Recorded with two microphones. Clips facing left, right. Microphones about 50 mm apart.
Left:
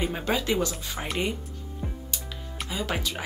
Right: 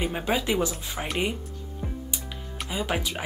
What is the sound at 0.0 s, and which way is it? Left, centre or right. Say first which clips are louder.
Speech: right 1 dB; centre.